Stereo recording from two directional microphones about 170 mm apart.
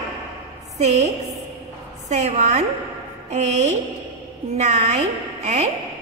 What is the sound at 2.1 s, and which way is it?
A woman's voice, 45° right (ahead or behind).